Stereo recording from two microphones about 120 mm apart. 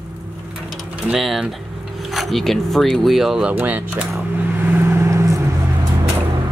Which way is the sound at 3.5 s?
15° right (ahead or behind).